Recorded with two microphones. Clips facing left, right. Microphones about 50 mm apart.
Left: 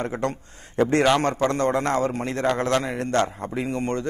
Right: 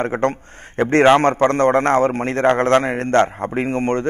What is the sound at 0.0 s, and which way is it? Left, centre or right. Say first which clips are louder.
A man's voice: right 7 dB; right.